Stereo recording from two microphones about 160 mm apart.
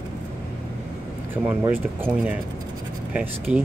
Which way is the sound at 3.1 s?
10° right (ahead or behind).